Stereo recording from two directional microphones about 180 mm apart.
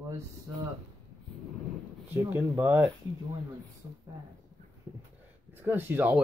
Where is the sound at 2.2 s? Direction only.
10° right (ahead or behind).